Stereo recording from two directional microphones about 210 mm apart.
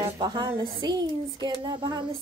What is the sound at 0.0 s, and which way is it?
A woman's voice, 20° right (ahead or behind).